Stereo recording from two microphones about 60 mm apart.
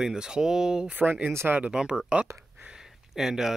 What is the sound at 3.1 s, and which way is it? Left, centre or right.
Speech, centre.